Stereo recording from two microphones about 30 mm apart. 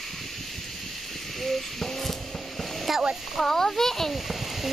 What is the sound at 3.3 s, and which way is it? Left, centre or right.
Speech, centre.